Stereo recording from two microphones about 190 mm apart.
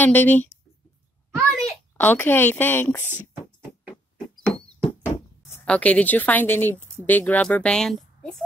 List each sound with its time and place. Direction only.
0.0 s a child's voice: 10° left (ahead or behind)
3.9 s rodents: 5° left (ahead or behind)
4.6 s knock: 25° left (ahead or behind)
5.5 s speech: 10° left (ahead or behind)